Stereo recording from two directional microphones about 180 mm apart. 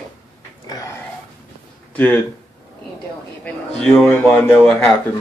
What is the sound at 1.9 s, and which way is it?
Speech, 10° left (ahead or behind).